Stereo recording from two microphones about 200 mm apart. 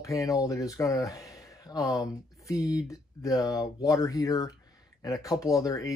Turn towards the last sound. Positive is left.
turn(degrees=15)  # may be behind; listen again after turning